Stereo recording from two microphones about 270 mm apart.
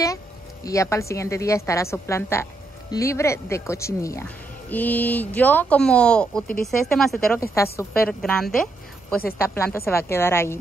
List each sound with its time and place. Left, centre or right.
0.7 s a woman's voice: centre